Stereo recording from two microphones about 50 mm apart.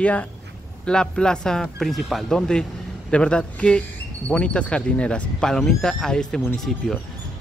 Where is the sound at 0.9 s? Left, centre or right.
Centre.